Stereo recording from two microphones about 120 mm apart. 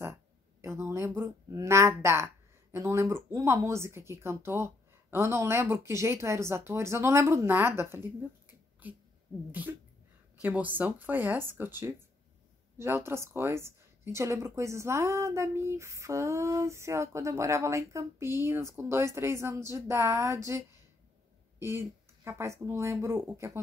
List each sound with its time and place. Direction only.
0.0 s speech: 20° right (ahead or behind)
9.5 s speech: 15° right (ahead or behind)